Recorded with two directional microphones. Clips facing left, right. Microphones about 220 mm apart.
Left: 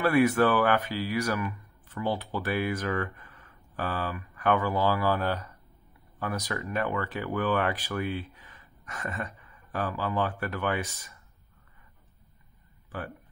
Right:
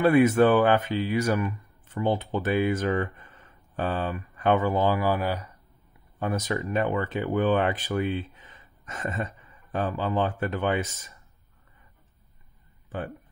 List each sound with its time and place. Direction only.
0.0 s speech: 20° right (ahead or behind)
6.1 s speech: 20° right (ahead or behind)
12.9 s speech: 25° right (ahead or behind)